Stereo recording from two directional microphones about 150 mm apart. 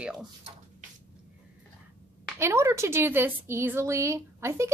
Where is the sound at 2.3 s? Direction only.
20° right (ahead or behind).